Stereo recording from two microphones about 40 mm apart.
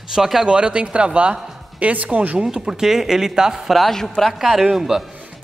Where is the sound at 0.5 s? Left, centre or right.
Right.